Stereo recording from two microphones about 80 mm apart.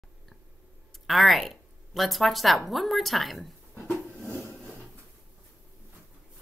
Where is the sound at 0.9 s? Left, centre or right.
Centre.